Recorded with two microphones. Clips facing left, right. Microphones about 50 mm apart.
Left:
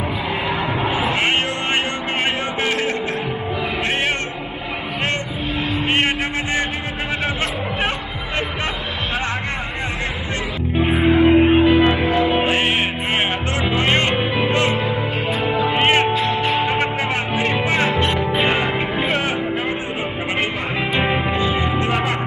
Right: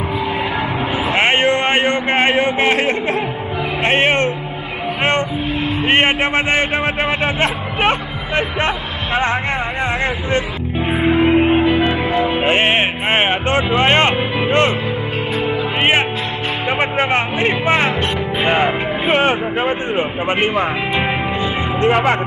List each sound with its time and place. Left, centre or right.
1.1 s a sound: right
1.9 s music: right
5.9 s a sound: right
8.4 s vehicle: right
12.4 s a sound: right
13.7 s music: right
15.7 s music: right
17.0 s music: right
19.0 s music: right
21.7 s speech: right